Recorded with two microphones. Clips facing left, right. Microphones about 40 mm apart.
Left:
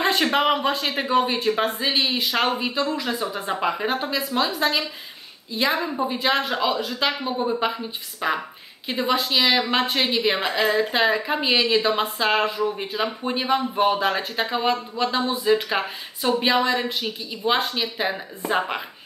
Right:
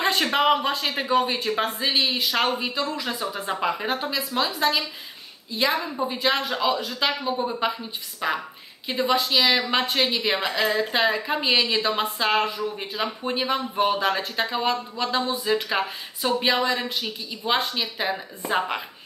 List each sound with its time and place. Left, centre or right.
0.0 s speech: centre
5.8 s speech: centre
6.0 s speech: centre